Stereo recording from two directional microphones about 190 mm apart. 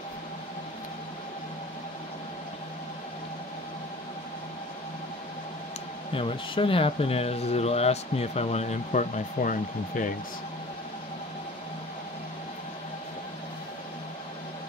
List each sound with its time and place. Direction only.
6.1 s speech: 30° left (ahead or behind); by 10.1 s 45° left (ahead or behind)